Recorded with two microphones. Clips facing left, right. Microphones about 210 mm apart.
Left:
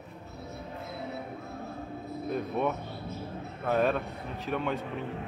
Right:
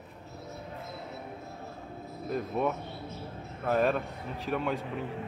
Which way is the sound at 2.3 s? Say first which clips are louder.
Even; centre (ahead or behind).